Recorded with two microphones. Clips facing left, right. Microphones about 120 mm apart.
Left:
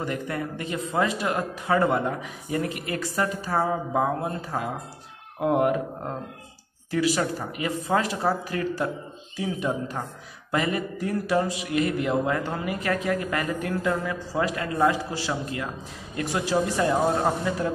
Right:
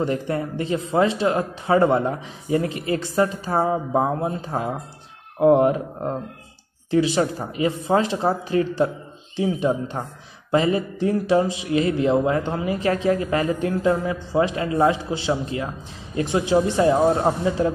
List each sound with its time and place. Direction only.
0.0 s speech: 30° right (ahead or behind)